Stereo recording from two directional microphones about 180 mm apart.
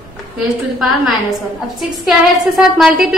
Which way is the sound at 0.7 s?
Centre (ahead or behind).